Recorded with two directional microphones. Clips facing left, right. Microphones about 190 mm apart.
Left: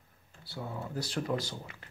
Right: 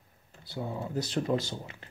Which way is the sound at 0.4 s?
20° right (ahead or behind).